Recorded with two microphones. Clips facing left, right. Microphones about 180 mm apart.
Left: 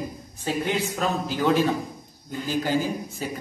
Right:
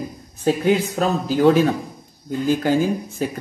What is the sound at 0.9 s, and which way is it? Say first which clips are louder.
Speech: right 6 dB; 35° right (ahead or behind).